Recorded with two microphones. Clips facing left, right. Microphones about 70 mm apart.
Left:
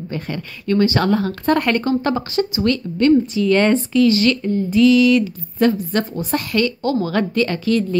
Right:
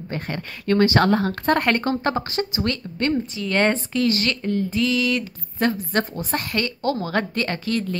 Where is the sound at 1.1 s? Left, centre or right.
Right.